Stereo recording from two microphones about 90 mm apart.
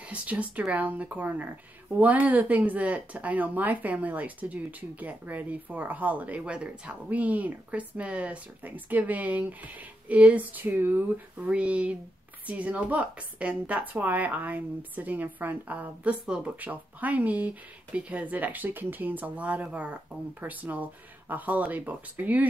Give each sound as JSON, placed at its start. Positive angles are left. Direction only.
{"t": 0.1, "sound": "speech", "side_deg": -15}